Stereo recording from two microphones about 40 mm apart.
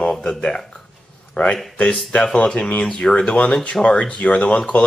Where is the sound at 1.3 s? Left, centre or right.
Left.